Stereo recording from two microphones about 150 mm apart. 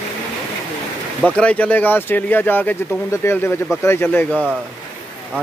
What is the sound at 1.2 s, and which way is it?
Speech, 10° left (ahead or behind).